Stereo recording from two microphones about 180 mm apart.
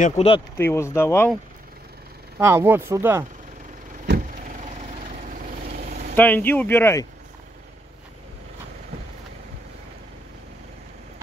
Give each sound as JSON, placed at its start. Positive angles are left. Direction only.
{"t": 0.0, "sound": "speech", "side_deg": 35}
{"t": 0.6, "sound": "speech", "side_deg": 15}
{"t": 2.3, "sound": "speech", "side_deg": -15}
{"t": 4.1, "sound": "vehicle", "side_deg": -50}
{"t": 6.1, "sound": "speech", "side_deg": 10}